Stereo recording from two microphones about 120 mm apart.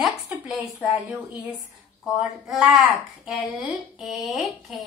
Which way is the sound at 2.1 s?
Centre (ahead or behind).